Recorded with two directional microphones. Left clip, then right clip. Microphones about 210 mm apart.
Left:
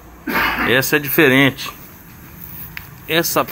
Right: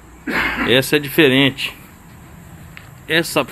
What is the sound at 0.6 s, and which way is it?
Speech, 15° right (ahead or behind).